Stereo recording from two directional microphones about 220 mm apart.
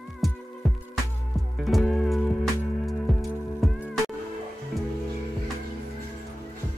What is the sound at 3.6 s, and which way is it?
Music, centre (ahead or behind).